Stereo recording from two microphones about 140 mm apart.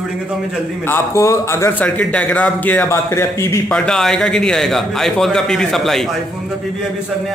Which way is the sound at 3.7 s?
5° left (ahead or behind).